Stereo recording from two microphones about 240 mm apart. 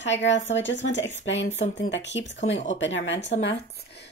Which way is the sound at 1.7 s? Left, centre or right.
Left.